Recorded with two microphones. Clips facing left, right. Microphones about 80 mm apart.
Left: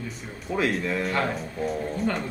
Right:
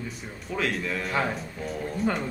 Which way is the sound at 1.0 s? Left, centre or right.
Centre.